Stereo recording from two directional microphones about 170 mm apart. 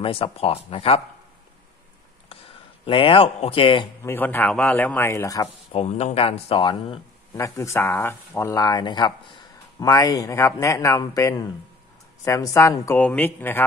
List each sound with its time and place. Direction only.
0.0 s speech: 35° left (ahead or behind)
2.8 s speech: 30° left (ahead or behind)
4.0 s speech: 15° left (ahead or behind)
5.7 s speech: 40° left (ahead or behind)
7.3 s speech: 15° left (ahead or behind)